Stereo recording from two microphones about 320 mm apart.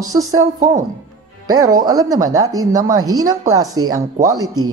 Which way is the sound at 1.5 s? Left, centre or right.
Centre.